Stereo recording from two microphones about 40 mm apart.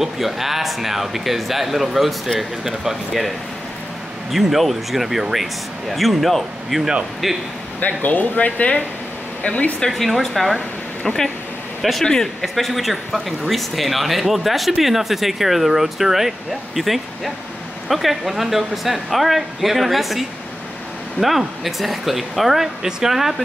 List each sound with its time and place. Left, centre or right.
0.0 s speech: centre
7.8 s speech: left
9.8 s speech: centre